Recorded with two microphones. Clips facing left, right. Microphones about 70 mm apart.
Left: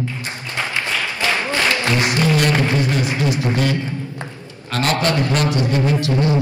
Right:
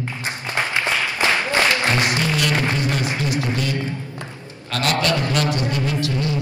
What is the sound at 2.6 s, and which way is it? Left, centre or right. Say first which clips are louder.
Music: left 3 dB; left.